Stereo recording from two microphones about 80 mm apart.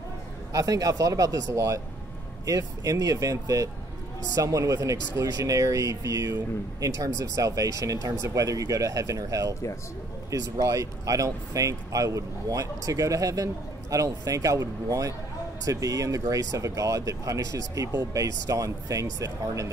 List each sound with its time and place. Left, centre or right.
0.5 s speech: right